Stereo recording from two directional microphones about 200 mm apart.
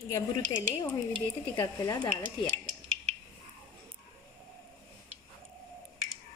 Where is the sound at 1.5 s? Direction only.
20° left (ahead or behind).